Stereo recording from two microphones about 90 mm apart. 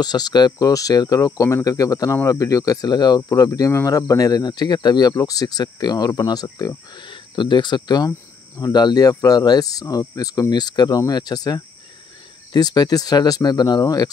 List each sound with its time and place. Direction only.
0.0 s speech: 50° left (ahead or behind)
3.2 s speech: 35° left (ahead or behind)
7.0 s speech: 60° left (ahead or behind)